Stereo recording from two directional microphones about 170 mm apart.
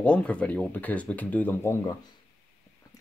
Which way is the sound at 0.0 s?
5° left (ahead or behind).